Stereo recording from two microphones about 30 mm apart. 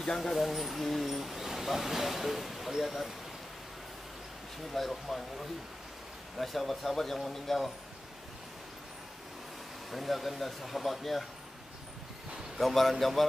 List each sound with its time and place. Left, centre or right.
0.0 s speech: centre
4.7 s speech: centre
6.3 s speech: centre
9.8 s speech: centre
12.5 s speech: centre